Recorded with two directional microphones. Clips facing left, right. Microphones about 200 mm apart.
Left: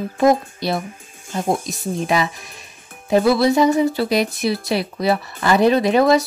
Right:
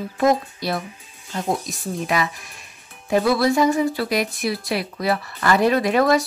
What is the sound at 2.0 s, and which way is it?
Speech, 25° left (ahead or behind).